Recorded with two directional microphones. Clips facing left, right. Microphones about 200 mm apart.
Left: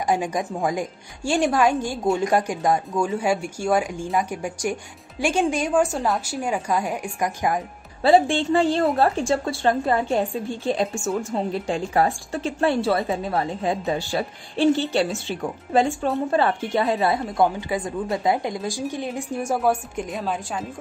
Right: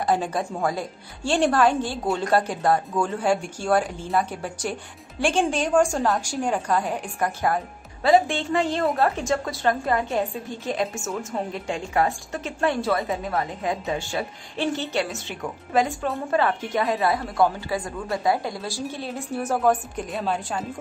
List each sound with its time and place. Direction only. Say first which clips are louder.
0.0 s a woman's voice: left 1 dB; 15° left (ahead or behind)
8.0 s a woman's voice: left 2 dB; 30° left (ahead or behind)
16.9 s a woman's voice: left 2 dB; 20° left (ahead or behind); by 20.2 s 5° left (ahead or behind)